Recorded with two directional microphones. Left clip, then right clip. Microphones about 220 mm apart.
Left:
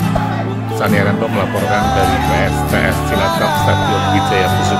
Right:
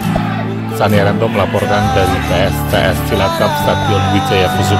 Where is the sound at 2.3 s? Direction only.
15° right (ahead or behind).